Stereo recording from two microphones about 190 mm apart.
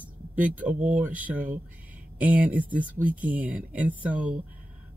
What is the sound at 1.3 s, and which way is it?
Speech, 45° right (ahead or behind).